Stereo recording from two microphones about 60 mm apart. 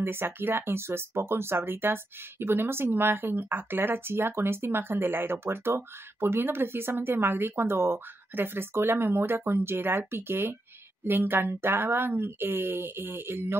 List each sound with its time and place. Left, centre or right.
0.0 s speech: right